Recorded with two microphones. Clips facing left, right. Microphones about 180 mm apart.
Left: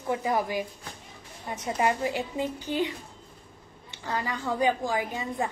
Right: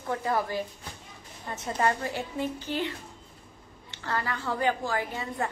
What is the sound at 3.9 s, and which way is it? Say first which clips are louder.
A woman's voice: even; 15° left (ahead or behind).